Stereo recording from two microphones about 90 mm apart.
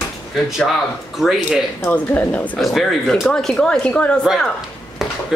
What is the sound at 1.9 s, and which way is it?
Speech, 20° left (ahead or behind).